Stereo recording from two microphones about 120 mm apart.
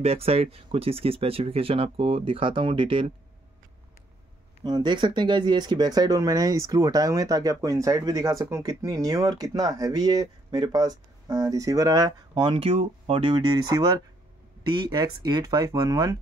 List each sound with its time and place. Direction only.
0.0 s speech: 55° right (ahead or behind)
4.6 s speech: 40° right (ahead or behind)
12.4 s speech: 55° right (ahead or behind); by 16.2 s 30° right (ahead or behind)